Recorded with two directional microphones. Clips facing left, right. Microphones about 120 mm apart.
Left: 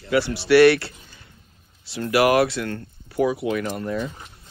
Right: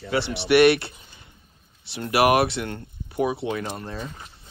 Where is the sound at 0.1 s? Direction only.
25° right (ahead or behind).